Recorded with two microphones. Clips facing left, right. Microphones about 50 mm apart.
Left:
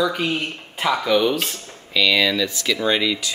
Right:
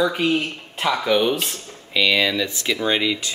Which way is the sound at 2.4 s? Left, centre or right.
Right.